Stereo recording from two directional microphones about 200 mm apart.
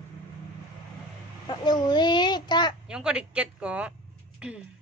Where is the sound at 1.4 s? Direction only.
20° left (ahead or behind).